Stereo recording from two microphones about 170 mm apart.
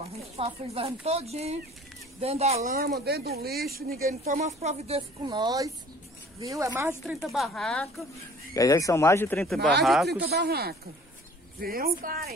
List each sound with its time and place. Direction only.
0.4 s speech: 35° right (ahead or behind)
2.6 s speech: 60° right (ahead or behind)
4.6 s speech: 40° right (ahead or behind); by 7.2 s 15° right (ahead or behind)
7.2 s speech: centre (ahead or behind)
8.5 s speech: 20° left (ahead or behind); by 9.7 s 5° left (ahead or behind)
10.0 s speech: 70° right (ahead or behind)